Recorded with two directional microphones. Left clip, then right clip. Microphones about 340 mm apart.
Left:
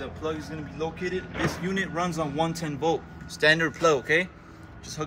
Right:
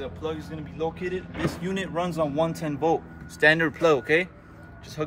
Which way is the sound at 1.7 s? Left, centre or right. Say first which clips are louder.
Even; centre.